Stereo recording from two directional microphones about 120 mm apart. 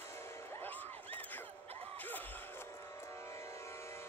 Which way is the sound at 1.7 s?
55° right (ahead or behind).